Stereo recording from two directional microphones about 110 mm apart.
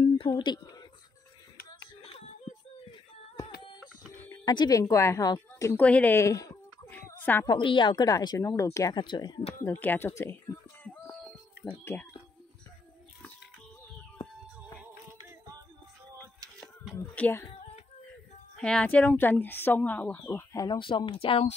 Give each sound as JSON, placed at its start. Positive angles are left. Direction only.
{"t": 0.3, "sound": "speech", "side_deg": 40}
{"t": 4.5, "sound": "speech", "side_deg": 35}
{"t": 5.8, "sound": "speech", "side_deg": 15}
{"t": 6.1, "sound": "speech", "side_deg": 30}
{"t": 7.1, "sound": "a sound", "side_deg": 20}
{"t": 7.4, "sound": "speech", "side_deg": 50}
{"t": 8.9, "sound": "speech", "side_deg": 45}
{"t": 9.8, "sound": "speech", "side_deg": 20}
{"t": 11.6, "sound": "speech", "side_deg": 20}
{"t": 17.1, "sound": "speech", "side_deg": 15}
{"t": 18.6, "sound": "speech", "side_deg": 10}
{"t": 20.5, "sound": "speech", "side_deg": 40}